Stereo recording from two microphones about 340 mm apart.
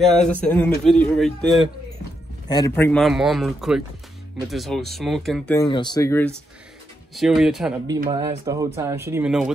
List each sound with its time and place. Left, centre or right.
0.4 s speech: centre
2.4 s speech: centre